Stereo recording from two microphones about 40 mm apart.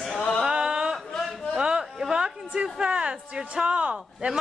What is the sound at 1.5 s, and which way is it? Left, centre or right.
Speech, right.